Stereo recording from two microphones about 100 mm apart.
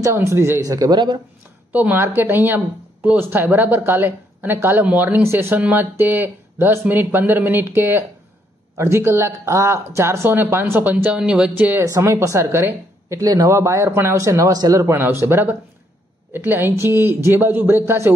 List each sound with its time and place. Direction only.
0.0 s speech: 25° right (ahead or behind)
0.7 s speech: 40° right (ahead or behind)
1.7 s speech: 15° right (ahead or behind)
11.8 s speech: 30° right (ahead or behind)
14.9 s speech: 25° right (ahead or behind)